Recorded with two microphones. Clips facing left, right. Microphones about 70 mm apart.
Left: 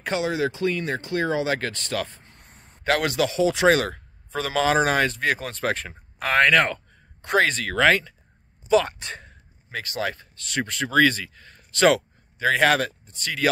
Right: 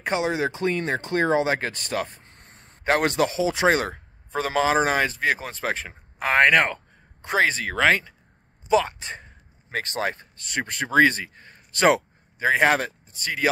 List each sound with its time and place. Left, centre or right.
0.0 s speech: right
2.3 s a sound: right
2.8 s a man's voice: right
3.3 s speech: centre
9.7 s speech: right